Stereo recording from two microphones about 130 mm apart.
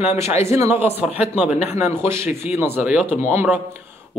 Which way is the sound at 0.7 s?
20° right (ahead or behind).